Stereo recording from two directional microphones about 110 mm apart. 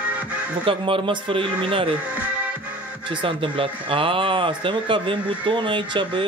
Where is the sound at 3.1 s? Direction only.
50° right (ahead or behind).